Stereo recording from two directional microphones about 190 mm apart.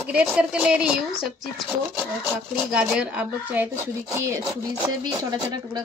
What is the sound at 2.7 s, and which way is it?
Speech, 5° right (ahead or behind).